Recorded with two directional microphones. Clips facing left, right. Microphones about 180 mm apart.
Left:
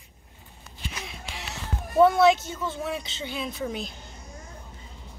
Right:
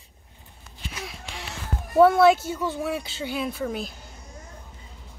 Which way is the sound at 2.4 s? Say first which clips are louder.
Right 4 dB; 10° right (ahead or behind).